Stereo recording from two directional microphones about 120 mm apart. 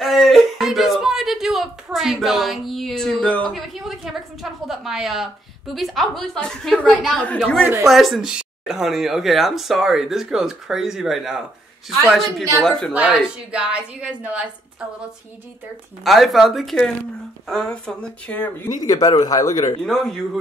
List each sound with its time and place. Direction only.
0.0 s a sound: centre (ahead or behind)
3.5 s a woman's voice: centre (ahead or behind)
12.9 s speech: 10° right (ahead or behind)
16.0 s speech: centre (ahead or behind)
18.7 s speech: 30° left (ahead or behind)
19.8 s speech: 5° left (ahead or behind)